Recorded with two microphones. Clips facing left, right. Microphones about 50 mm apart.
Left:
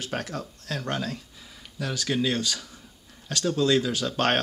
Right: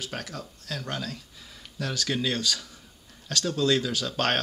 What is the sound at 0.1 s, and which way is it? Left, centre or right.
Speech, left.